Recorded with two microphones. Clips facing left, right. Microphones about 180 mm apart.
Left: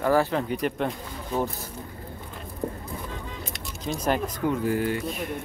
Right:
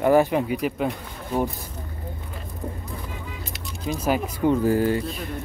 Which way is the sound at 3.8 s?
5° right (ahead or behind).